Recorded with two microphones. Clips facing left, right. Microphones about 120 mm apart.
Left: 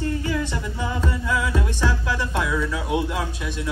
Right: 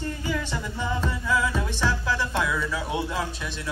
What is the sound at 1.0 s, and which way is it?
Music, 5° left (ahead or behind).